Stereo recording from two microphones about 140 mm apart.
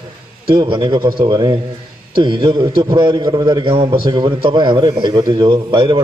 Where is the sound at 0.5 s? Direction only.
35° right (ahead or behind).